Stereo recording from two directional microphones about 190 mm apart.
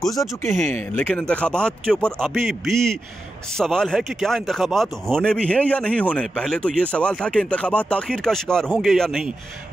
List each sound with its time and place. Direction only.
0.0 s speech: 20° left (ahead or behind)
0.6 s speech: 40° right (ahead or behind)
0.9 s speech: 10° left (ahead or behind)